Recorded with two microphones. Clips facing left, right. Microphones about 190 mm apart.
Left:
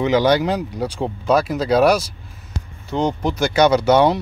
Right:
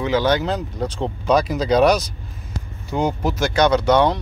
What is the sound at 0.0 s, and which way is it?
Speech, 15° left (ahead or behind).